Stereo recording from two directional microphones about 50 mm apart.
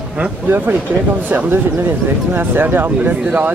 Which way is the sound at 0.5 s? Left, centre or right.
Right.